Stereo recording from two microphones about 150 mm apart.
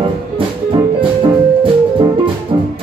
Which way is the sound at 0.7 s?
35° right (ahead or behind).